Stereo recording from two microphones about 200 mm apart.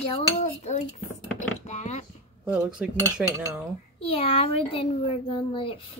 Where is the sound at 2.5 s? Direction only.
5° right (ahead or behind).